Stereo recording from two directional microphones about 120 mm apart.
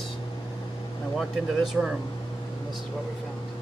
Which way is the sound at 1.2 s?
Centre (ahead or behind).